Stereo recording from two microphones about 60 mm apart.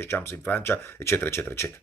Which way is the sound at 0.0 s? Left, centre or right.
Left.